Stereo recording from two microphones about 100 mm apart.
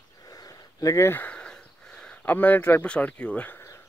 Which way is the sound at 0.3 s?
35° left (ahead or behind).